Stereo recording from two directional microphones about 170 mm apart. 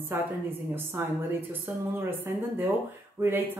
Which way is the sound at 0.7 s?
10° right (ahead or behind).